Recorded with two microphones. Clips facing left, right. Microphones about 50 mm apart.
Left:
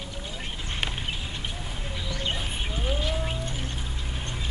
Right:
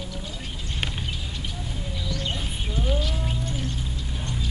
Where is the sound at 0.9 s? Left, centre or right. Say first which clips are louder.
Even; left.